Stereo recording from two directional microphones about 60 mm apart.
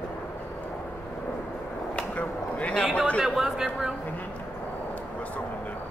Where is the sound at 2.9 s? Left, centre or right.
Left.